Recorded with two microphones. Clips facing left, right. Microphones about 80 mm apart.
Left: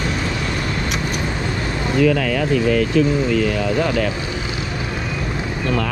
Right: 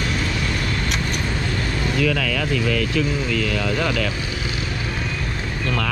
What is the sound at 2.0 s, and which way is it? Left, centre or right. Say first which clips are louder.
Speech: left 7 dB; left.